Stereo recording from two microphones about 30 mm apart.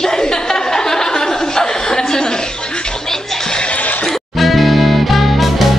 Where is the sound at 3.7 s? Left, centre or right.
Left.